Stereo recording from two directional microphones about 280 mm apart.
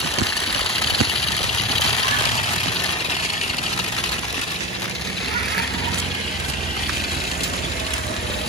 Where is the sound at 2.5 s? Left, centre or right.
Left.